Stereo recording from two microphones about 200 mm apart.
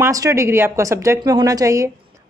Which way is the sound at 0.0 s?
15° right (ahead or behind).